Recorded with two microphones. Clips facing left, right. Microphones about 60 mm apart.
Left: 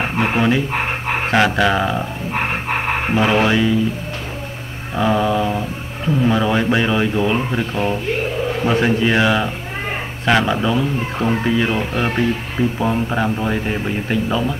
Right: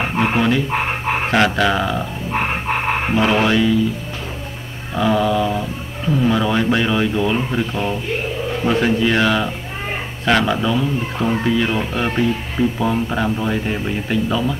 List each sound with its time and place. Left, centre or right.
0.0 s speech: centre
3.1 s speech: centre
4.9 s speech: centre
8.8 s speech: centre